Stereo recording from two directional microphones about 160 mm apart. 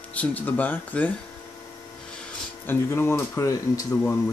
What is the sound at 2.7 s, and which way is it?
Speech, 15° left (ahead or behind).